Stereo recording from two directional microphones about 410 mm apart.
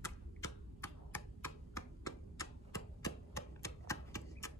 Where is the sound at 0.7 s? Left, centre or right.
Centre.